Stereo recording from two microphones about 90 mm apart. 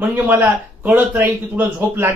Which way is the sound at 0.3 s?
20° right (ahead or behind).